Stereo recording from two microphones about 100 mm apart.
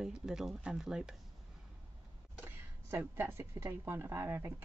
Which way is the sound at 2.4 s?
20° right (ahead or behind).